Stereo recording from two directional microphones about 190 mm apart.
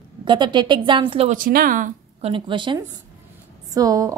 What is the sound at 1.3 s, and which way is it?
Speech, 50° right (ahead or behind).